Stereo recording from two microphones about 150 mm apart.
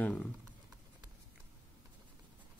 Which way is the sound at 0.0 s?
10° left (ahead or behind).